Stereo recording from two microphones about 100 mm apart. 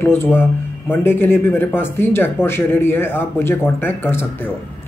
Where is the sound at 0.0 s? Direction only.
20° left (ahead or behind).